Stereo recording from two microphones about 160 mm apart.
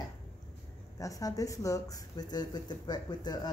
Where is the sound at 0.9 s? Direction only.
20° left (ahead or behind).